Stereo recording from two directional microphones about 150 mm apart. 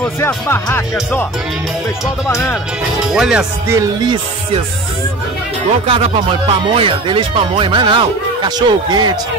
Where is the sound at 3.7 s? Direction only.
20° right (ahead or behind).